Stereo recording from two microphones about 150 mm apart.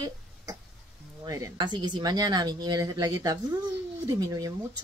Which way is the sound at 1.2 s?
25° right (ahead or behind).